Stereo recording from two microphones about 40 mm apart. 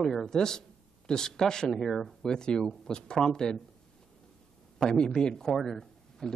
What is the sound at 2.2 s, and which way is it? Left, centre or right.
Speech, centre.